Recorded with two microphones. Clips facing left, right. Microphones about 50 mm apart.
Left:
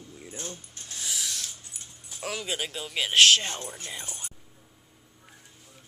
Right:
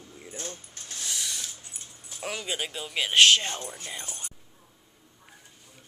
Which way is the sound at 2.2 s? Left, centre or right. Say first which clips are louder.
Even; centre.